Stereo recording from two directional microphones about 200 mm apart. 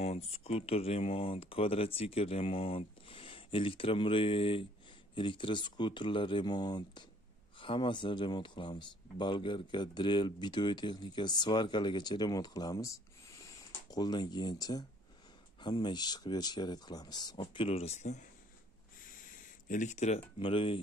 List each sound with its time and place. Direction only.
0.0 s speech: 30° left (ahead or behind)
19.7 s speech: 35° left (ahead or behind)